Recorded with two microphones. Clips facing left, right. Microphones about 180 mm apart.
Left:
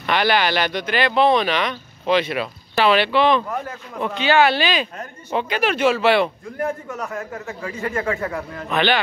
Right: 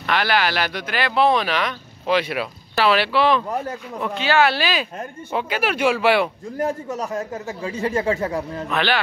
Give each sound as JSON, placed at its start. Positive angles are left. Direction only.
{"t": 0.0, "sound": "speech", "side_deg": 0}
{"t": 6.6, "sound": "a man's voice", "side_deg": -30}
{"t": 8.6, "sound": "speech", "side_deg": 0}